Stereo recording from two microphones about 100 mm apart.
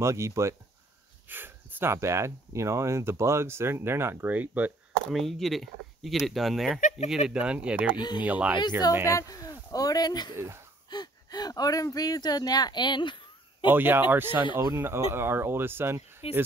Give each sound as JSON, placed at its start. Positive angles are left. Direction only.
{"t": 0.0, "sound": "speech", "side_deg": -30}
{"t": 5.1, "sound": "speech", "side_deg": 0}
{"t": 7.2, "sound": "speech", "side_deg": -10}
{"t": 9.1, "sound": "speech", "side_deg": 35}
{"t": 10.3, "sound": "speech", "side_deg": -25}
{"t": 10.9, "sound": "speech", "side_deg": 45}
{"t": 13.7, "sound": "speech", "side_deg": -20}
{"t": 16.2, "sound": "speech", "side_deg": 80}